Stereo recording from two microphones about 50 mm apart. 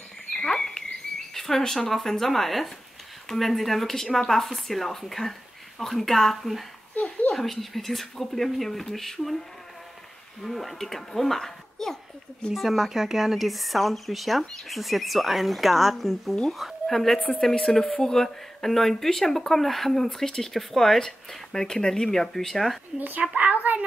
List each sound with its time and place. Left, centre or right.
0.3 s bird: centre
1.9 s speech: centre
10.4 s speech: centre
22.9 s speech: right
23.4 s a sound: right